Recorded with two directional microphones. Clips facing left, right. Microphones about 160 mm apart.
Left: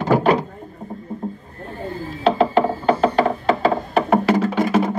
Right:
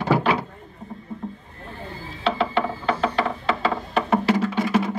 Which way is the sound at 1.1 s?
40° left (ahead or behind).